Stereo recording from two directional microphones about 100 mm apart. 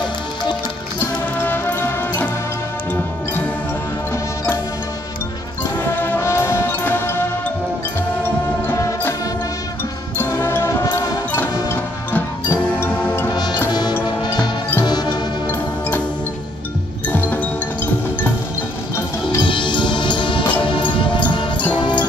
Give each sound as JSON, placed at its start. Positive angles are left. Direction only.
{"t": 1.4, "sound": "music", "side_deg": 20}
{"t": 5.6, "sound": "music", "side_deg": 20}
{"t": 10.1, "sound": "music", "side_deg": 25}
{"t": 13.3, "sound": "music", "side_deg": 45}
{"t": 17.1, "sound": "music", "side_deg": 15}
{"t": 19.4, "sound": "music", "side_deg": 55}